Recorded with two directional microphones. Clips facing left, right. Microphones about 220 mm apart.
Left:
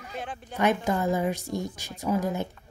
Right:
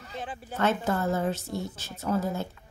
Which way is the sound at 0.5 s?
15° left (ahead or behind).